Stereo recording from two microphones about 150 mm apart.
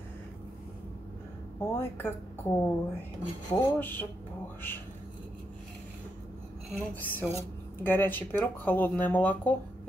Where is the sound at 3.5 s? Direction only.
15° left (ahead or behind).